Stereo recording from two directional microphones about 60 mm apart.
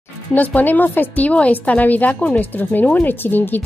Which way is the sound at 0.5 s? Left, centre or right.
Left.